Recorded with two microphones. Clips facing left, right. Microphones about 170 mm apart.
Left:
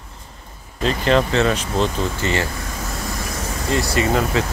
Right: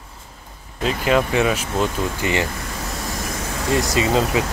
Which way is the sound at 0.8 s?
5° right (ahead or behind).